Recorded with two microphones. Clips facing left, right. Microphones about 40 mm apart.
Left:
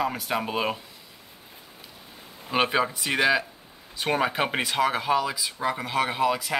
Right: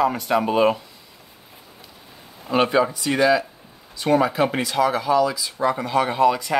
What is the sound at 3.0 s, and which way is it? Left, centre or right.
Speech, left.